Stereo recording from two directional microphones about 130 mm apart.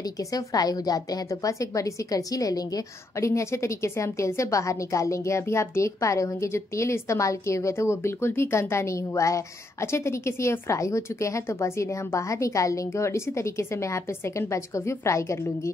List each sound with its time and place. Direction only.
0.3 s a woman's voice: 30° left (ahead or behind)